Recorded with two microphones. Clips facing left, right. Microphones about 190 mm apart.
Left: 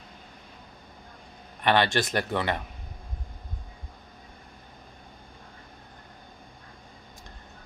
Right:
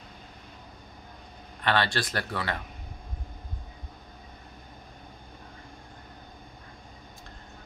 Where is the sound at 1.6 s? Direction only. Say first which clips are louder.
Left 4 dB; 20° left (ahead or behind).